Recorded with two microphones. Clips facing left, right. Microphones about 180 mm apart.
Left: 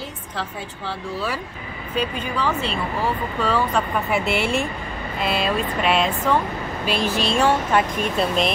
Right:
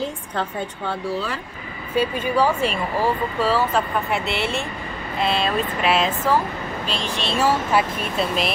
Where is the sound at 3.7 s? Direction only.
Centre (ahead or behind).